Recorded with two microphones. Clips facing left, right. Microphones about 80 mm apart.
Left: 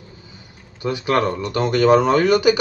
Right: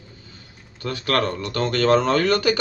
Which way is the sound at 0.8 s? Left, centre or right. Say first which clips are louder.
Left 3 dB; centre.